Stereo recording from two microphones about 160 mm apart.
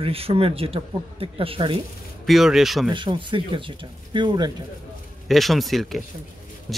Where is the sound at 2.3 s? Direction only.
Centre (ahead or behind).